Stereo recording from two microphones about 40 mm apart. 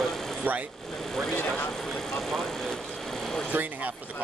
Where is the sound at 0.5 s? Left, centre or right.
Right.